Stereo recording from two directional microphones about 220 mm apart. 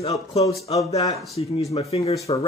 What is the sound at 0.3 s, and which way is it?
Speech, 25° left (ahead or behind).